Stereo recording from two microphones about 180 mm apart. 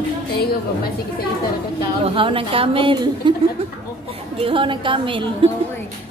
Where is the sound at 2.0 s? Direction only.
30° right (ahead or behind).